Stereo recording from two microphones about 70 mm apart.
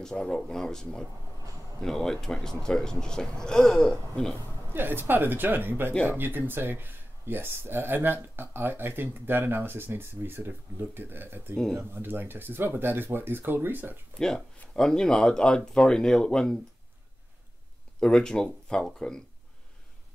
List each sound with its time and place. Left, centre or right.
0.0 s speech: centre
4.7 s a woman's voice: right
14.1 s speech: centre
18.0 s speech: centre